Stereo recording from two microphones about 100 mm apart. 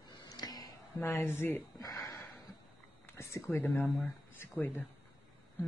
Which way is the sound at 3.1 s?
30° left (ahead or behind).